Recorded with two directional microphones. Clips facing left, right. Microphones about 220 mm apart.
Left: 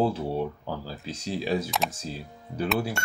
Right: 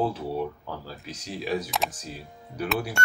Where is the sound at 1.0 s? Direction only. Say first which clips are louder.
Left 3 dB; 30° left (ahead or behind).